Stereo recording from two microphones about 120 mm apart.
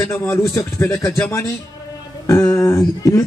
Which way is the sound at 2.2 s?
25° left (ahead or behind).